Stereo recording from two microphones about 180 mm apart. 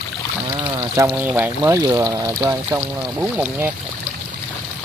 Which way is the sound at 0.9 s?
10° right (ahead or behind).